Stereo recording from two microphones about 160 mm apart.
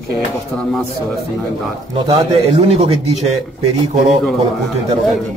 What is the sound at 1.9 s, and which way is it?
Speech, 30° right (ahead or behind).